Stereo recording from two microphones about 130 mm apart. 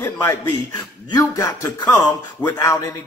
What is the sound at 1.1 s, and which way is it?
Speech, 25° left (ahead or behind).